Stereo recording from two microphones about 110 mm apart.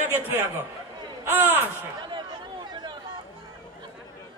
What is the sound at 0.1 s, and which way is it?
A man's voice, 20° right (ahead or behind).